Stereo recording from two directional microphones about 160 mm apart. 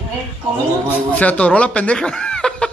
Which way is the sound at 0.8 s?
10° left (ahead or behind).